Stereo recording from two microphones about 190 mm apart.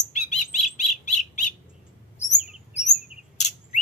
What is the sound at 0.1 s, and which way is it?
Bird, 40° left (ahead or behind).